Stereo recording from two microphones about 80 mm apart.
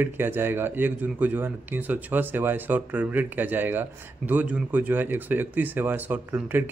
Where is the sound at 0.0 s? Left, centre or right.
Right.